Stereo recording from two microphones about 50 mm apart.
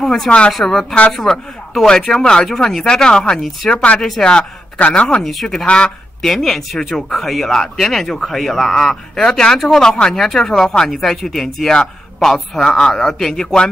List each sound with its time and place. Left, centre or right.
0.0 s speech: centre
5.2 s speech: centre
5.7 s speech: centre
6.2 s speech: centre
9.2 s speech: centre
10.9 s speech: centre